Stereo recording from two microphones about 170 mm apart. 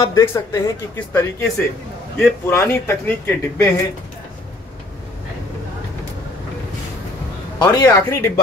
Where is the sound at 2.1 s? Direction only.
15° left (ahead or behind).